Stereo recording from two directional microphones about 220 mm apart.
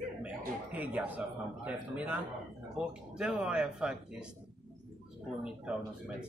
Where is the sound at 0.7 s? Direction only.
5° right (ahead or behind).